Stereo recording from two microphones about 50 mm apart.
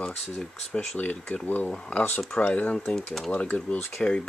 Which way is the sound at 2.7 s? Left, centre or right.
Centre.